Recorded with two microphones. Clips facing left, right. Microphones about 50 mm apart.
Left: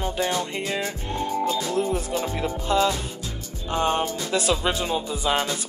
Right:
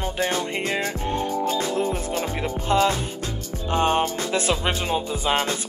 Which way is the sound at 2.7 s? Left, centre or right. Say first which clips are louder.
Right 2 dB; right.